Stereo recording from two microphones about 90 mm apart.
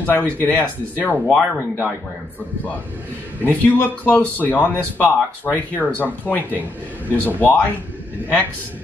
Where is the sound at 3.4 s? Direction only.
20° left (ahead or behind).